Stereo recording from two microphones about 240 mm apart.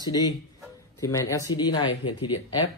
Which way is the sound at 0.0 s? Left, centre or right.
Centre.